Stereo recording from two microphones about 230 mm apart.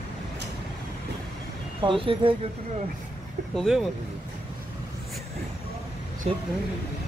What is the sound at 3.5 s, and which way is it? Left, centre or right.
Speech, centre.